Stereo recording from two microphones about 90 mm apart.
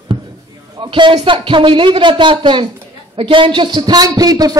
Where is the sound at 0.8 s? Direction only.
65° right (ahead or behind).